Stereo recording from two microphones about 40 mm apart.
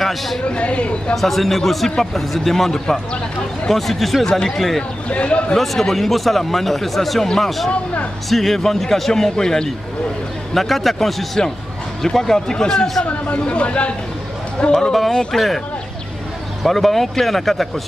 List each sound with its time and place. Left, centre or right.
0.0 s speech: centre
0.5 s speech: left
1.1 s a man's voice: centre
2.7 s a man's voice: centre
3.6 s a man's voice: centre
4.3 s speech: left
4.6 s a man's voice: centre
5.0 s a man's voice: left
5.6 s a man's voice: centre
13.0 s speech: left
14.7 s a man's voice: centre
16.6 s a man's voice: centre